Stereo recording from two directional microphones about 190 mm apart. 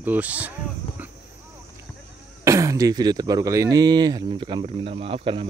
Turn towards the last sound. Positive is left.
turn(degrees=-30)  # may be behind; listen again after turning